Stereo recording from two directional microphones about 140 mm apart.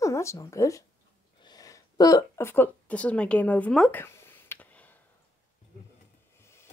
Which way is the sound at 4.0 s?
15° left (ahead or behind).